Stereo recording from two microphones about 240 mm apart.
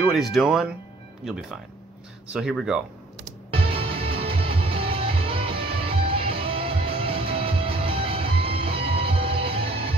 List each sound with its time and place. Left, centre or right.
0.1 s speech: centre
3.5 s music: right